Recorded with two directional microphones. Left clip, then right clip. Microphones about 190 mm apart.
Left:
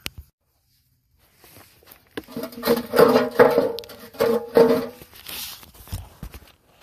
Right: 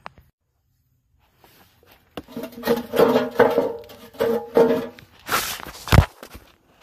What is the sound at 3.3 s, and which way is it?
Music, 15° left (ahead or behind).